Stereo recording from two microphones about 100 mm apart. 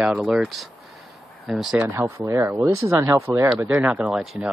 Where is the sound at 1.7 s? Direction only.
25° right (ahead or behind).